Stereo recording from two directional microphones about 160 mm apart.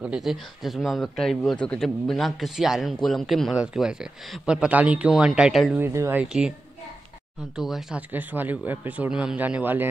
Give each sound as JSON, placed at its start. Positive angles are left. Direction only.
{"t": 0.0, "sound": "speech", "side_deg": -5}
{"t": 5.8, "sound": "speech", "side_deg": -15}
{"t": 6.2, "sound": "speech", "side_deg": -5}
{"t": 7.5, "sound": "speech", "side_deg": 0}